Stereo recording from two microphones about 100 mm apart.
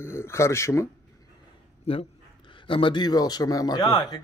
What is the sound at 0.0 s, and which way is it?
Speech, 25° left (ahead or behind).